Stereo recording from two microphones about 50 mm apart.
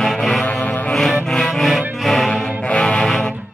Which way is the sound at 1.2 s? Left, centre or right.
Centre.